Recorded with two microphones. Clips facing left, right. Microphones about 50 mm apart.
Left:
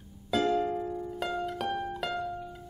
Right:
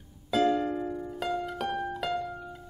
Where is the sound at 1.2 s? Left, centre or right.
Centre.